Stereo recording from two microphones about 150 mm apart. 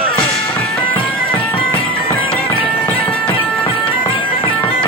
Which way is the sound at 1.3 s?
35° left (ahead or behind).